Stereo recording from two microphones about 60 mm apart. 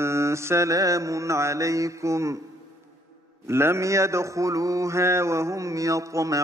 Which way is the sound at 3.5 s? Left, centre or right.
Right.